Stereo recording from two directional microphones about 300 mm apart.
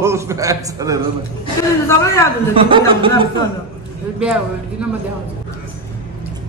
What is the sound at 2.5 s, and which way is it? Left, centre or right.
Speech, centre.